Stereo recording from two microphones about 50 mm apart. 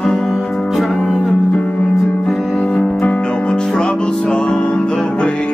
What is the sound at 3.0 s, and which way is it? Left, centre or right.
Music, left.